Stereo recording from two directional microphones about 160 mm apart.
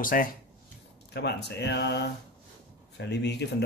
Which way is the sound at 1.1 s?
90° left.